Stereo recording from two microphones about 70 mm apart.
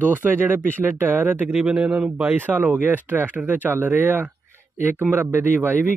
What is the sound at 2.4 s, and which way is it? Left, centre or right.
A man's voice, right.